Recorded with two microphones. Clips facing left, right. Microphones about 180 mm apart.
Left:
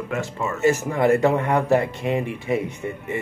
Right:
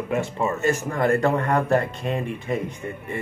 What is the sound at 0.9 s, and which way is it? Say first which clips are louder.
Speech: left 1 dB; 10° left (ahead or behind).